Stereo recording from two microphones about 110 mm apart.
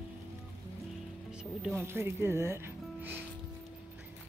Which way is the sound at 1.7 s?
20° right (ahead or behind).